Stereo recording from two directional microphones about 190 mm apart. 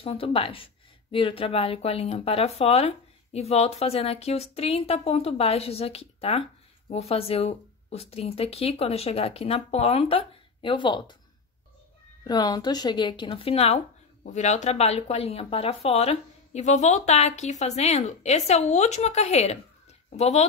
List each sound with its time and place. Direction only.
0.0 s speech: 30° left (ahead or behind)
12.3 s speech: 20° left (ahead or behind)